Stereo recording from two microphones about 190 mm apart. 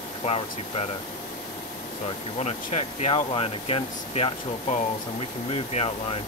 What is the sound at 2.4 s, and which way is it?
Speech, 35° left (ahead or behind).